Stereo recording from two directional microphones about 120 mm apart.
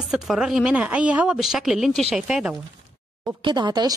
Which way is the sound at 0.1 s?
5° right (ahead or behind).